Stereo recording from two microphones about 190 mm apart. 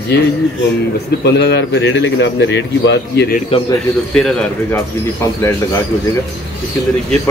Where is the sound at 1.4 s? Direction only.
65° left (ahead or behind).